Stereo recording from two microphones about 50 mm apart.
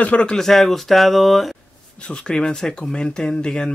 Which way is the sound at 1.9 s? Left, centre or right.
Centre.